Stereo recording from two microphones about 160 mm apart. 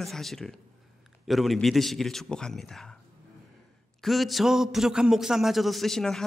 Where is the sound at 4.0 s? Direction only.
Centre (ahead or behind).